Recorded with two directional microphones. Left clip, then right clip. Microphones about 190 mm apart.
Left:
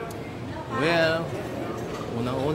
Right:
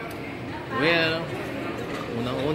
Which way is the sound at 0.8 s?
20° left (ahead or behind).